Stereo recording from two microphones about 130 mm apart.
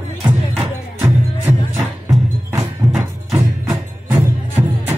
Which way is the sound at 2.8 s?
25° right (ahead or behind).